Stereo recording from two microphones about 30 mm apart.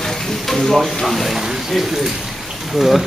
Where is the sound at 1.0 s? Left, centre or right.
Centre.